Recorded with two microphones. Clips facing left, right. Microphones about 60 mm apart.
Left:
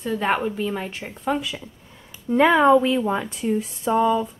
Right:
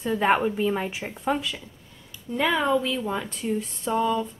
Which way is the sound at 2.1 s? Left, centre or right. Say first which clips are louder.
Left 8 dB; left.